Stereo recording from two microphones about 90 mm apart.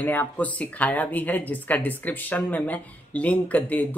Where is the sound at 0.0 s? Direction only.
20° left (ahead or behind).